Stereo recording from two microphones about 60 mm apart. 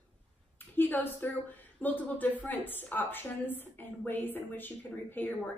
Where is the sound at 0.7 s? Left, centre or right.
Left.